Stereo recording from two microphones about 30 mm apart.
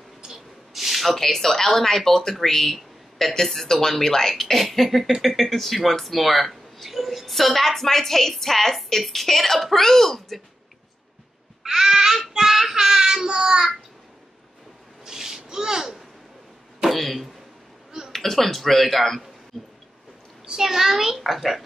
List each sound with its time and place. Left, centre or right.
0.3 s rub: centre
1.2 s a woman's voice: centre
11.6 s child singing: centre
15.0 s a sound: centre
15.4 s a child's voice: right
16.9 s a woman's voice: centre
19.5 s a sound: centre
20.5 s a child's voice: centre